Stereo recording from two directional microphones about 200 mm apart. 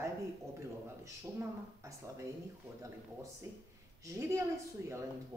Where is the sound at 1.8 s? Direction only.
15° right (ahead or behind).